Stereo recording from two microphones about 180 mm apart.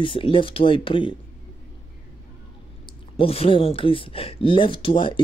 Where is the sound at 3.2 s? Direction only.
30° left (ahead or behind).